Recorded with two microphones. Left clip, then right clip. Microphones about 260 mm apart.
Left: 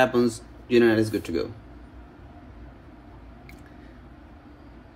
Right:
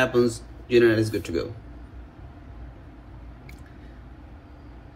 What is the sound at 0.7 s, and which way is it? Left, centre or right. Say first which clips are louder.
Speech: right 1 dB; left.